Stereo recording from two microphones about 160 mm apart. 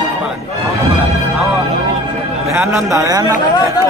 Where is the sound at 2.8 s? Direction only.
20° right (ahead or behind).